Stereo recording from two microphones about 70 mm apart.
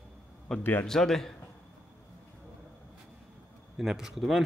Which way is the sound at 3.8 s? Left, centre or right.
Centre.